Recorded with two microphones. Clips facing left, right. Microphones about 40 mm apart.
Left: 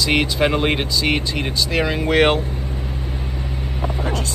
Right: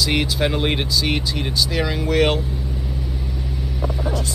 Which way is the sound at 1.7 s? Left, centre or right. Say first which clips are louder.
Left 3 dB; left.